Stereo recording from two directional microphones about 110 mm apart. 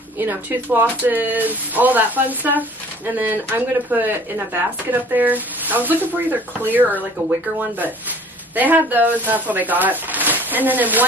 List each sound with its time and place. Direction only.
0.2 s speech: 15° right (ahead or behind)
8.5 s speech: 15° right (ahead or behind)